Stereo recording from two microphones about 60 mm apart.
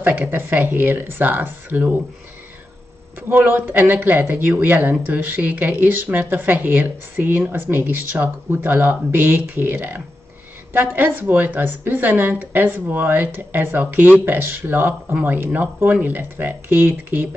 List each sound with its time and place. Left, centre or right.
0.0 s speech: right
3.2 s speech: right